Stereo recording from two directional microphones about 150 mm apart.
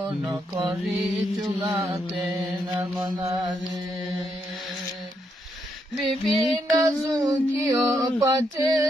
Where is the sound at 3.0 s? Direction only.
30° right (ahead or behind).